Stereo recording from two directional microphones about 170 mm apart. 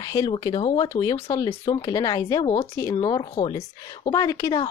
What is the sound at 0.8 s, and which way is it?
Speech, 20° left (ahead or behind).